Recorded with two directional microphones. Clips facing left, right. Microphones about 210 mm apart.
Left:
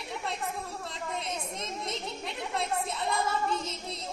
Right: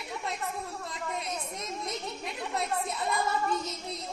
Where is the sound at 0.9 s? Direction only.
30° left (ahead or behind).